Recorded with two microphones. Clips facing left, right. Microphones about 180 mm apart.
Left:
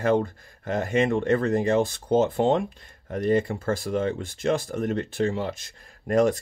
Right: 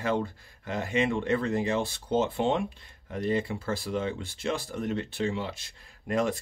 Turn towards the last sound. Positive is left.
turn(degrees=45)  # may be behind; listen again after turning